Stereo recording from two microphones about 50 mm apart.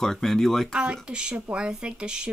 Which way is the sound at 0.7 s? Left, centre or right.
Centre.